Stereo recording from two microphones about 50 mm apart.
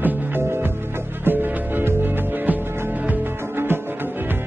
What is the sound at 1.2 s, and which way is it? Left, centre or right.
Music, right.